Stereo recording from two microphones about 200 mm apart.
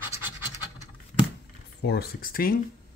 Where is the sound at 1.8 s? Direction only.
55° left (ahead or behind).